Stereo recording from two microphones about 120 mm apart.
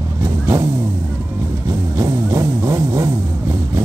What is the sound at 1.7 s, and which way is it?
Music, 25° right (ahead or behind).